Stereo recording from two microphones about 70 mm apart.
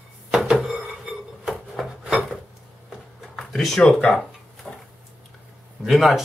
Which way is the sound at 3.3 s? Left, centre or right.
Centre.